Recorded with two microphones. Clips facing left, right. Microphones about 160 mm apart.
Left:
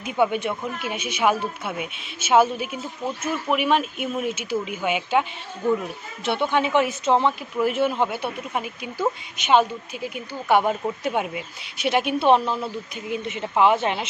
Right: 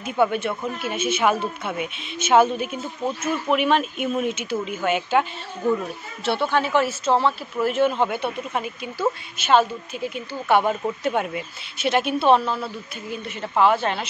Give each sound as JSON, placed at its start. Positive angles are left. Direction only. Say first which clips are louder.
{"t": 0.0, "sound": "speech", "louder": "right 1 dB", "side_deg": 10}
{"t": 6.2, "sound": "speech", "louder": "even", "side_deg": 20}